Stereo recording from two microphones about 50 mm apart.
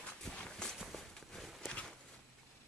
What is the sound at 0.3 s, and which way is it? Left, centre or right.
Walk, centre.